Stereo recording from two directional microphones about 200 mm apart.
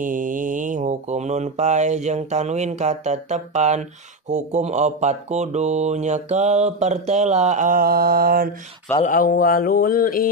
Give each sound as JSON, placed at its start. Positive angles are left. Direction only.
{"t": 0.0, "sound": "speech", "side_deg": -40}
{"t": 9.0, "sound": "mantra", "side_deg": 45}